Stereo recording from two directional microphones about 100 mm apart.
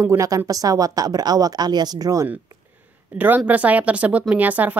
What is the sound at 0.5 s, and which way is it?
A woman's voice, 35° right (ahead or behind).